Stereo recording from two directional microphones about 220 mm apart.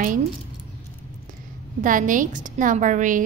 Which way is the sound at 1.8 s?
35° right (ahead or behind).